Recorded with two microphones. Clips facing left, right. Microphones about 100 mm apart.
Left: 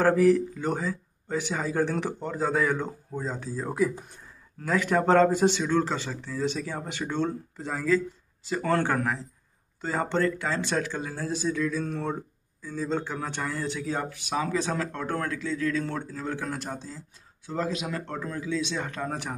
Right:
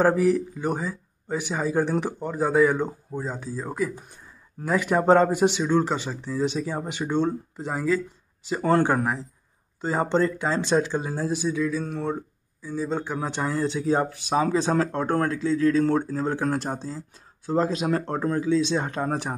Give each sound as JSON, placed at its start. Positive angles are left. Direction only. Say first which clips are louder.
{"t": 0.0, "sound": "speech", "louder": "even", "side_deg": -15}
{"t": 4.6, "sound": "speech", "louder": "right 2 dB", "side_deg": -15}